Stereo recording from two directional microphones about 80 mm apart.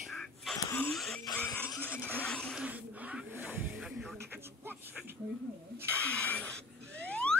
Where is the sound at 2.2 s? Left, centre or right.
Centre.